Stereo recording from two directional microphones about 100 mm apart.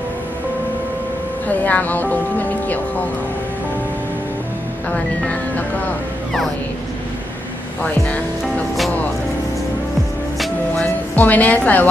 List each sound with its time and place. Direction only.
1.5 s speech: 15° left (ahead or behind)
4.9 s speech: 15° left (ahead or behind)
10.8 s speech: 15° left (ahead or behind)